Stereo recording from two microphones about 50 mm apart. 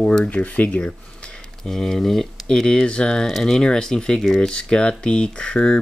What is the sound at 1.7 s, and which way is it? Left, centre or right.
Speech, centre.